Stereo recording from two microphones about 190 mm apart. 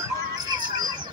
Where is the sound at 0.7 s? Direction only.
20° right (ahead or behind).